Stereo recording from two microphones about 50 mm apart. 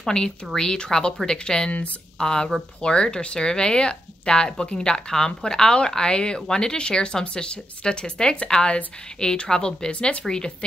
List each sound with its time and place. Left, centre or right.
0.0 s speech: centre
1.7 s speech: left
2.1 s a woman's voice: centre